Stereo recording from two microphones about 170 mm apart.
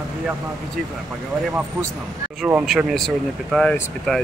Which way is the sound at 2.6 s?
Centre (ahead or behind).